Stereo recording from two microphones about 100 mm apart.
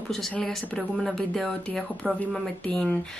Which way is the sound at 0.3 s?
5° left (ahead or behind).